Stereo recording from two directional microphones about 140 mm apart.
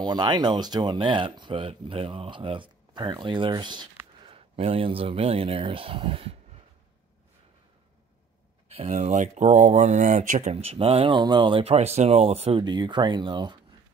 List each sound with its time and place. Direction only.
0.0 s speech: 30° right (ahead or behind)
8.6 s speech: 55° right (ahead or behind)
10.5 s speech: 45° right (ahead or behind)
12.6 s speech: 30° right (ahead or behind)